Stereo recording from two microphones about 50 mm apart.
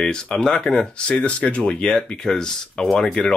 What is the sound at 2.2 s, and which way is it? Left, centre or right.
Speech, centre.